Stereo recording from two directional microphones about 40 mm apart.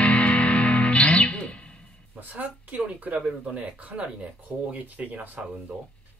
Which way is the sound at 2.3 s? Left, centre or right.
Right.